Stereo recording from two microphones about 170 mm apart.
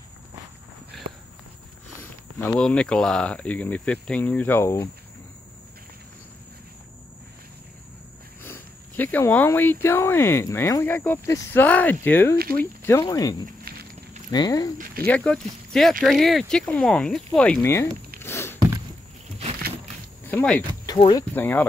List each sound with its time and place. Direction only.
2.0 s speech: 10° left (ahead or behind)
8.4 s speech: 10° left (ahead or behind)
13.7 s walk: 65° right (ahead or behind)
14.3 s speech: 25° left (ahead or behind)
15.0 s speech: 5° left (ahead or behind)
18.2 s a sound: 15° left (ahead or behind)
20.2 s speech: 10° left (ahead or behind)
20.8 s speech: 25° left (ahead or behind)
21.3 s speech: 10° left (ahead or behind)